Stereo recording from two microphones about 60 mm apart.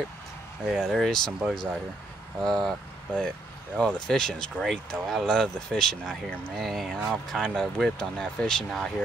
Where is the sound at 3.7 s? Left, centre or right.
Centre.